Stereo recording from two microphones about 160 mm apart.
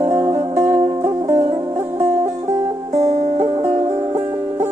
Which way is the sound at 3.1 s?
40° right (ahead or behind).